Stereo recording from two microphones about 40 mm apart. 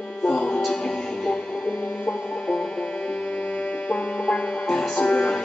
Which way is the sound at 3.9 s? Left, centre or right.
Left.